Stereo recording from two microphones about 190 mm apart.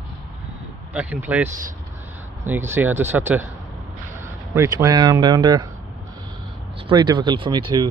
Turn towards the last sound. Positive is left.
turn(degrees=-20)  # may be behind; listen again after turning